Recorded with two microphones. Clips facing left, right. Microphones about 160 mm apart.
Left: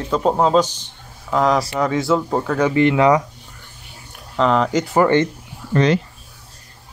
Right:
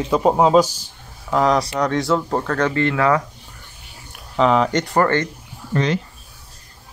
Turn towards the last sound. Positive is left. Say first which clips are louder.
# left 4 dB
turn(degrees=80)